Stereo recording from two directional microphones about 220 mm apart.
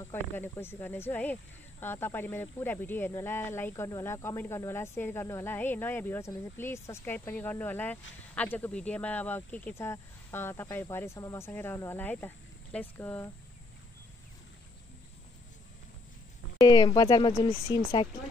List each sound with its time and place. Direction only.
0.1 s speech: 10° left (ahead or behind)
16.5 s speech: 20° left (ahead or behind)